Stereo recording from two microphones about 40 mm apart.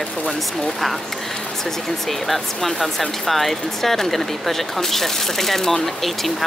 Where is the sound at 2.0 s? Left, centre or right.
Centre.